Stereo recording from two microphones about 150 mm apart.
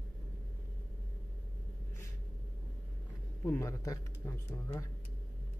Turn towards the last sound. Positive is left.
turn(degrees=20)  # may be behind; listen again after turning